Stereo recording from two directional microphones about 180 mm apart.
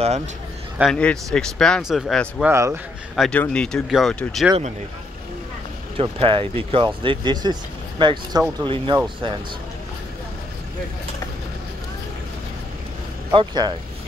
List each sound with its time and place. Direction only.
0.7 s speech: 5° left (ahead or behind)
2.4 s speech: 15° right (ahead or behind)
3.2 s speech: 5° left (ahead or behind)
5.9 s speech: 30° right (ahead or behind)
13.3 s speech: 25° right (ahead or behind)